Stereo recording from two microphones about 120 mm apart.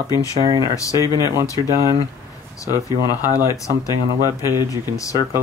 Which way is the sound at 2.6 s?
30° left (ahead or behind).